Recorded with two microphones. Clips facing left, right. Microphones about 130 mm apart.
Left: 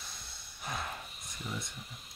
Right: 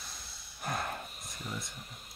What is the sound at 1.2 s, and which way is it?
Speech, centre (ahead or behind).